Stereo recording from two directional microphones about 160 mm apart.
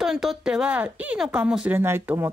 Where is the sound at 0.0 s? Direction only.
Centre (ahead or behind).